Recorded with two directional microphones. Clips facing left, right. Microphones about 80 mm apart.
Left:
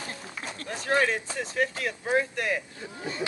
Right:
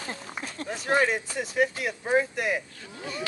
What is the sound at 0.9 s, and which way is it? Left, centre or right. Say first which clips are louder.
Speech: right 1 dB; centre.